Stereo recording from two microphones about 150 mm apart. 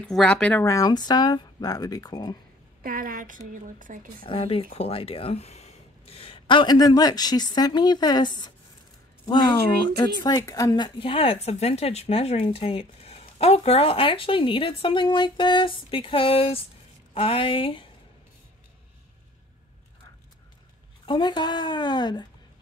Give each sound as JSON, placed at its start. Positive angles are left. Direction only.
{"t": 0.0, "sound": "speech", "side_deg": 5}
{"t": 0.7, "sound": "speech", "side_deg": 25}
{"t": 2.8, "sound": "a woman's voice", "side_deg": -70}
{"t": 4.2, "sound": "speech", "side_deg": 35}
{"t": 21.0, "sound": "speech", "side_deg": 30}